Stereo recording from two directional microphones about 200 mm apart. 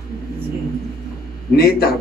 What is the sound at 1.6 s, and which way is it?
Speech, 50° left (ahead or behind).